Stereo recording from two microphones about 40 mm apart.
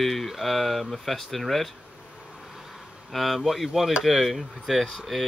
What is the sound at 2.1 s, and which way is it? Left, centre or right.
Vehicle, centre.